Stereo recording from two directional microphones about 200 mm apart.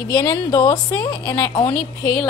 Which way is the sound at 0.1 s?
15° left (ahead or behind).